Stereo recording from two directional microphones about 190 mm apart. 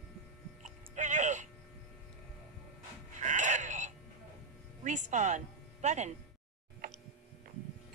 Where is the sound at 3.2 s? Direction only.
40° right (ahead or behind).